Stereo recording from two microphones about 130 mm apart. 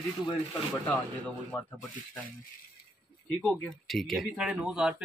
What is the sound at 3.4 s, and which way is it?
Speech, 5° left (ahead or behind).